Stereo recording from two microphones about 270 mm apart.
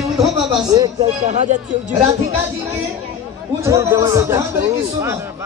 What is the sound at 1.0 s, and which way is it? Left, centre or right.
Speech, right.